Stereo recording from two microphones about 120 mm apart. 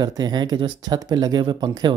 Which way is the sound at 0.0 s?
35° right (ahead or behind).